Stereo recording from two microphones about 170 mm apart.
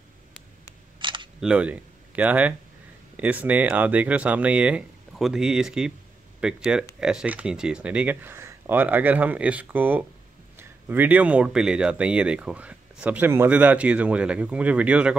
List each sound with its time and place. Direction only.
0.9 s camera: 30° right (ahead or behind)
1.4 s speech: 5° right (ahead or behind)